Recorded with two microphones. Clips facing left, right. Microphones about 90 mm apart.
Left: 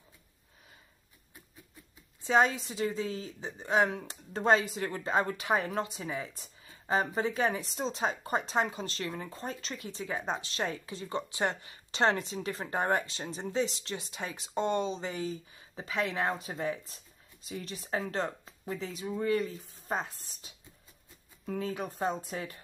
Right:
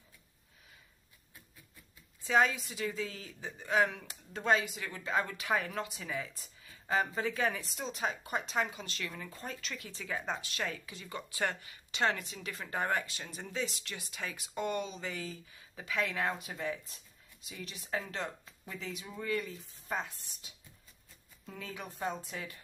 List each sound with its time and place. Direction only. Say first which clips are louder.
2.2 s a woman's voice: left 3 dB; 25° left (ahead or behind)
4.0 s speech: left 6 dB; 40° left (ahead or behind)
21.5 s speech: left 7 dB; 40° left (ahead or behind)